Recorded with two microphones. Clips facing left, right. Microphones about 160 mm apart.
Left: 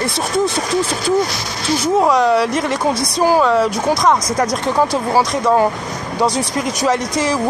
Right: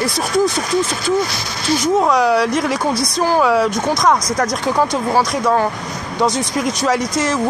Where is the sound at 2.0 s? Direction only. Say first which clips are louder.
Left 1 dB; centre (ahead or behind).